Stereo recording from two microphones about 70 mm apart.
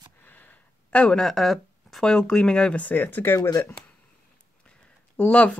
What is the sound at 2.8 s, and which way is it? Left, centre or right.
Speech, left.